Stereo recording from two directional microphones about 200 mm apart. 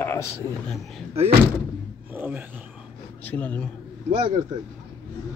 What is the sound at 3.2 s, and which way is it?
Speech, 5° left (ahead or behind).